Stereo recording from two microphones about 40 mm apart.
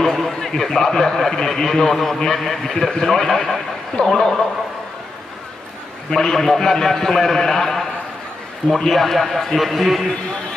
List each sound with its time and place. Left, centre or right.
0.0 s a man's voice: centre
3.3 s a man's voice: centre
4.0 s a man's voice: left
6.0 s a man's voice: centre